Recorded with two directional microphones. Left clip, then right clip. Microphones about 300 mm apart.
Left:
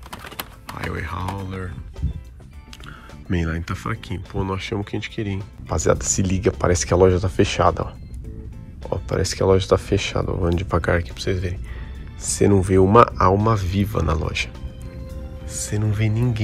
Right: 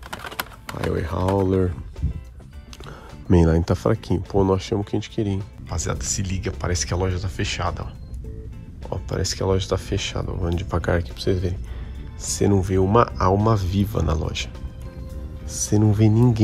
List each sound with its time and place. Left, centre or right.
0.1 s bird: centre
0.9 s speech: centre
1.2 s speech: centre
3.6 s speech: centre